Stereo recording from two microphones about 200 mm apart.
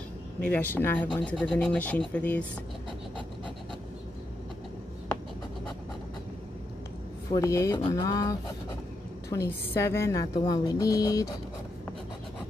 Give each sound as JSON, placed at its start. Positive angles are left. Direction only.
{"t": 0.5, "sound": "speech", "side_deg": 10}
{"t": 7.3, "sound": "speech", "side_deg": 15}